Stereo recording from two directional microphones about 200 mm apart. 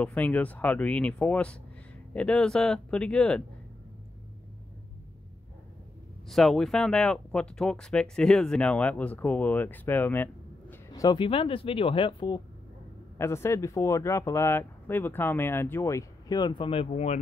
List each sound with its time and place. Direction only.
0.0 s speech: 5° left (ahead or behind)
6.2 s speech: centre (ahead or behind)
10.9 s speech: 20° left (ahead or behind)
13.2 s speech: 15° left (ahead or behind); by 17.2 s 30° left (ahead or behind)